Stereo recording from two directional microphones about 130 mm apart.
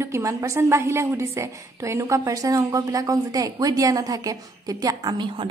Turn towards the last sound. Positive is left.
turn(degrees=-35)  # may be behind; listen again after turning